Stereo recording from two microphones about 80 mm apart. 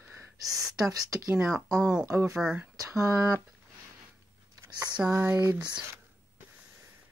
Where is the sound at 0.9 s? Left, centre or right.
Right.